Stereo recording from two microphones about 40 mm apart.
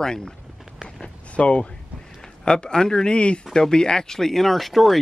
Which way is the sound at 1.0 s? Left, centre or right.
Left.